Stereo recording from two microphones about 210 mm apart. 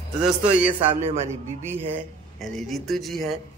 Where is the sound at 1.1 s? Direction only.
30° right (ahead or behind).